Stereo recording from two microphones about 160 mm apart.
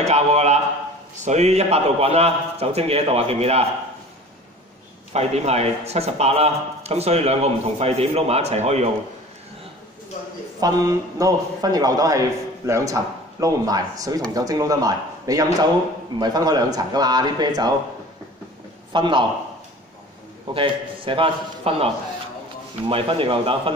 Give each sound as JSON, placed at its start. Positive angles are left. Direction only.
{"t": 0.0, "sound": "a man's voice", "side_deg": -45}
{"t": 5.1, "sound": "a man's voice", "side_deg": -45}
{"t": 10.6, "sound": "a man's voice", "side_deg": -25}
{"t": 18.9, "sound": "a man's voice", "side_deg": -30}
{"t": 20.5, "sound": "a man's voice", "side_deg": -35}